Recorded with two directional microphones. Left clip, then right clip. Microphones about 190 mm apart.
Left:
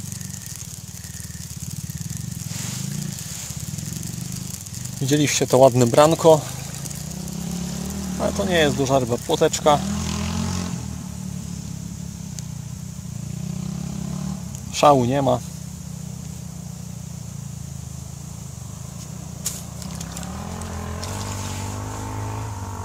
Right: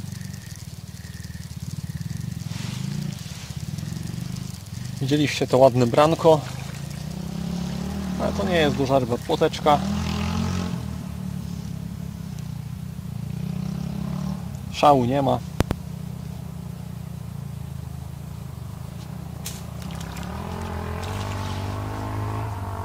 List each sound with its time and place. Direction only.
5.0 s speech: 40° left (ahead or behind)
8.2 s speech: 40° left (ahead or behind)
10.0 s vehicle: 10° right (ahead or behind)
14.7 s speech: 40° left (ahead or behind)